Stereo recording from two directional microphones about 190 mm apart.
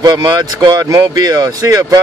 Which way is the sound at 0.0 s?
20° right (ahead or behind).